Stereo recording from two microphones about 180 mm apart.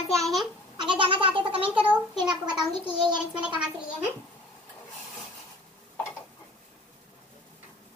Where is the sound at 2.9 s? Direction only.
25° right (ahead or behind).